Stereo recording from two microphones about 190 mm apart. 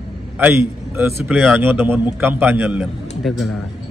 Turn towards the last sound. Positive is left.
turn(degrees=0)  # may be behind; listen again after turning